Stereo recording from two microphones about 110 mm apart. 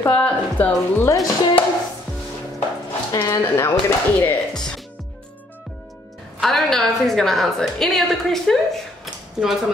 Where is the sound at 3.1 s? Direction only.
25° left (ahead or behind).